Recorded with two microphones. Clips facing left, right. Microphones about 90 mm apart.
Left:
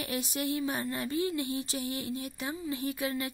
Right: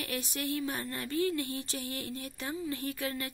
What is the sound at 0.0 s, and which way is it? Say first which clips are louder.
A woman's voice: left 3 dB; 20° left (ahead or behind).